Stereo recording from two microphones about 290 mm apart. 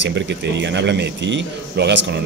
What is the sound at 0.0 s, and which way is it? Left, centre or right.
Speech, right.